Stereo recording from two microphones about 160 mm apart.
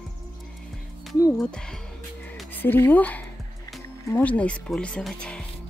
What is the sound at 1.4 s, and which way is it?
A woman's voice, 5° left (ahead or behind).